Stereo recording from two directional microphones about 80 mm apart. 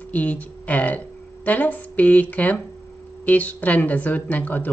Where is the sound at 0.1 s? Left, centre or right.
Centre.